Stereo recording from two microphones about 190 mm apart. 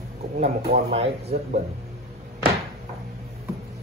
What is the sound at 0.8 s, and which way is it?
Speech, 30° right (ahead or behind).